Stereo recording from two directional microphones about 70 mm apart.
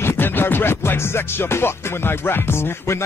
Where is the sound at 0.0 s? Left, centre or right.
Left.